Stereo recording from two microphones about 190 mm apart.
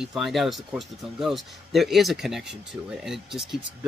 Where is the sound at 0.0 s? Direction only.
Centre (ahead or behind).